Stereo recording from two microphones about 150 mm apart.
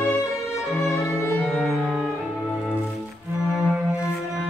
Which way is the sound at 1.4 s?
Centre (ahead or behind).